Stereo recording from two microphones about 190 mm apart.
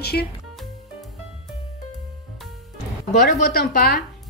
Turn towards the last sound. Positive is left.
turn(degrees=55)  # may be behind; listen again after turning